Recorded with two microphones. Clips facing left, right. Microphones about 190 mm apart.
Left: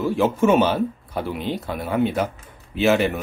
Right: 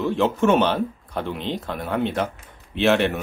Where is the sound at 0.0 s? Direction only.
5° left (ahead or behind).